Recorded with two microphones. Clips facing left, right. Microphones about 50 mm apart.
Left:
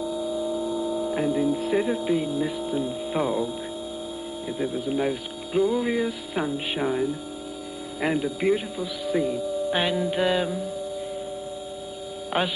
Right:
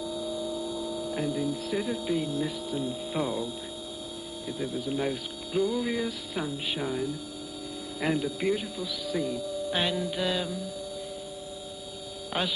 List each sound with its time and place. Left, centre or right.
0.0 s speech: centre
4.5 s speech: left
12.3 s speech: left